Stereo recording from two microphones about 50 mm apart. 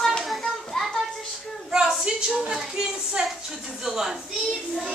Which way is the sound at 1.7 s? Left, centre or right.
Centre.